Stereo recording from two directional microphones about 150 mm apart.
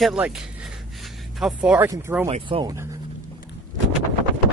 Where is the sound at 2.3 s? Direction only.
35° right (ahead or behind).